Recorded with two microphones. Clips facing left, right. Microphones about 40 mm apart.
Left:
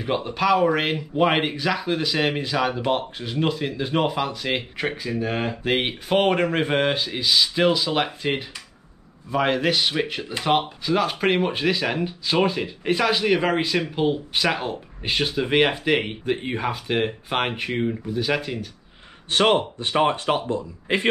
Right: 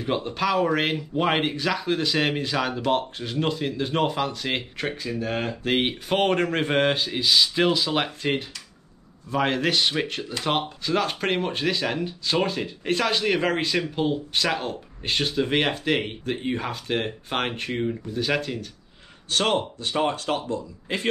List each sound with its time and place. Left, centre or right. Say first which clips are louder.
0.0 s speech: left 2 dB; centre
19.2 s speech: left 4 dB; left